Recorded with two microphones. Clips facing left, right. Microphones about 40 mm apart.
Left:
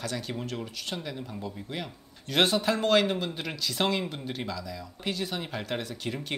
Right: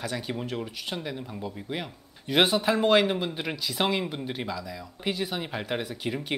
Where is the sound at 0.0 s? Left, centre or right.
Centre.